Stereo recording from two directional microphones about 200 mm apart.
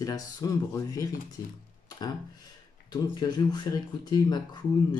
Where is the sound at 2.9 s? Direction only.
20° left (ahead or behind).